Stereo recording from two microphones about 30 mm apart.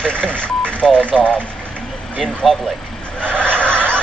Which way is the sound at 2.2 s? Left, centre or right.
Centre.